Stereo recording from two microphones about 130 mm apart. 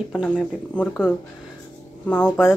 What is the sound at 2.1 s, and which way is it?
Speech, 15° left (ahead or behind).